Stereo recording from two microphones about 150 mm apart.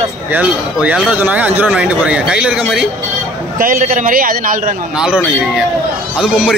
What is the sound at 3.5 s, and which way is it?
A man's voice, 70° right (ahead or behind).